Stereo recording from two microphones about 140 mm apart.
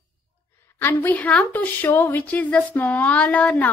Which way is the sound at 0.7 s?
15° left (ahead or behind).